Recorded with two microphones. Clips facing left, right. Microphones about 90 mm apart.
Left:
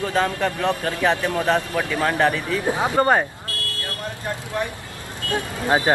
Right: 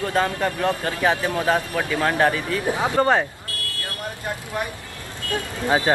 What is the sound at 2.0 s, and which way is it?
Speech, centre (ahead or behind).